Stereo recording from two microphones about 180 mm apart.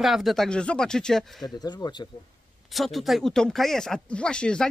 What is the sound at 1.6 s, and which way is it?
Speech, 20° left (ahead or behind).